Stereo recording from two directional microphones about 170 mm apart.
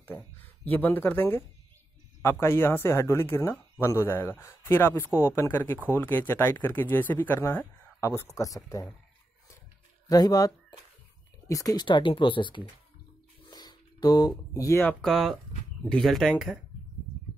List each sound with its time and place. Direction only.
0.0 s speech: 10° left (ahead or behind)
2.4 s speech: 15° left (ahead or behind)
10.0 s speech: 20° left (ahead or behind); by 16.5 s centre (ahead or behind)